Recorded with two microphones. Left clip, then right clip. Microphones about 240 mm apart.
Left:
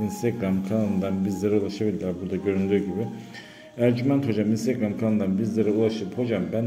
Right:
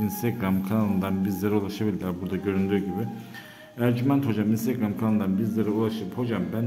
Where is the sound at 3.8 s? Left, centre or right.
Centre.